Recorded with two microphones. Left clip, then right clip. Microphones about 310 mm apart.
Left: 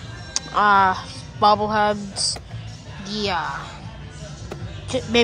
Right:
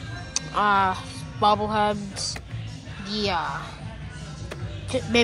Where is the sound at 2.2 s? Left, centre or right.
Left.